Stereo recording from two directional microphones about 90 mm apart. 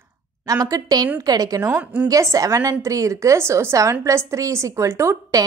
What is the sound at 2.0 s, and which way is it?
A woman's voice, 40° right (ahead or behind).